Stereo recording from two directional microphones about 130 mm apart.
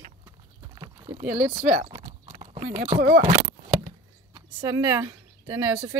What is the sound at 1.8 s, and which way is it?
Clip-clop, 45° right (ahead or behind).